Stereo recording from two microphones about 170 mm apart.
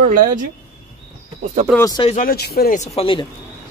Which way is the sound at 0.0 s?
50° right (ahead or behind).